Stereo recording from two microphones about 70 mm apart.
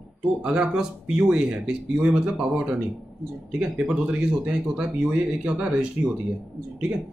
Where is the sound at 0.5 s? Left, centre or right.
Centre.